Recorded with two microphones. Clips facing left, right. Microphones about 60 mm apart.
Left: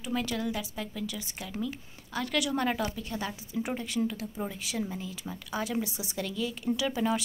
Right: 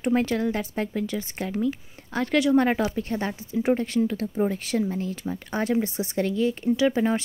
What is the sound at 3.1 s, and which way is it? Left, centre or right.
A woman's voice, right.